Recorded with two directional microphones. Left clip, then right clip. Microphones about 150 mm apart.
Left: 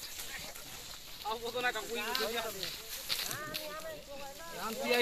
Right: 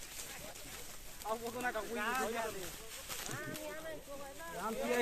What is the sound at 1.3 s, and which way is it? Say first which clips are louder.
Speech: left 4 dB; centre (ahead or behind).